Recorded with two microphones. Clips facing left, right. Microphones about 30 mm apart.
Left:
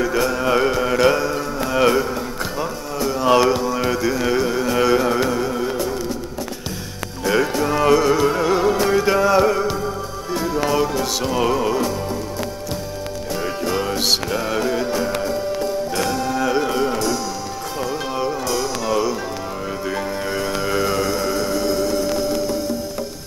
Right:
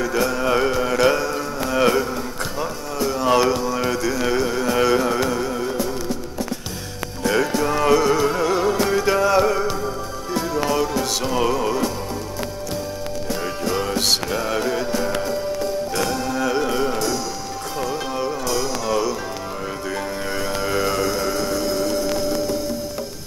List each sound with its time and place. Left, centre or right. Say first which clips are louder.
0.0 s mantra: left 1 dB; centre
7.2 s music: left 1 dB; centre
13.4 s music: left 2 dB; centre
15.9 s music: left 1 dB; centre
16.9 s music: left 2 dB; left
17.7 s music: left 1 dB; centre